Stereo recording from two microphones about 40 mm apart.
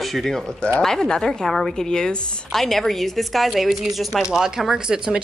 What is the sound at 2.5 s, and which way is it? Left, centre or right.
A man's voice, centre.